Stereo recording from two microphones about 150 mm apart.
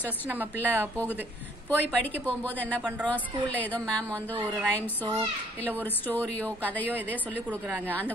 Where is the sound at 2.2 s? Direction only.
10° left (ahead or behind).